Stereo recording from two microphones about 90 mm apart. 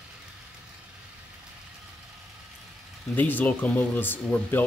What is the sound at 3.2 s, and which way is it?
Speech, 20° left (ahead or behind).